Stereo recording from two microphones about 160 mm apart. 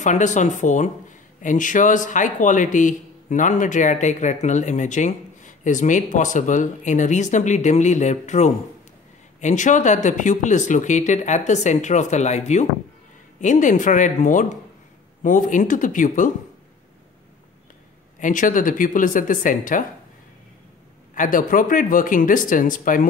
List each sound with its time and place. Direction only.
0.0 s speech: 50° left (ahead or behind)
18.2 s speech: 55° left (ahead or behind)
21.1 s speech: 55° left (ahead or behind)